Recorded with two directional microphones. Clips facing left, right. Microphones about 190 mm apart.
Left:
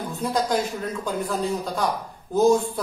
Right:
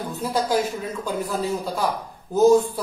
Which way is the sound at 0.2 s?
5° right (ahead or behind).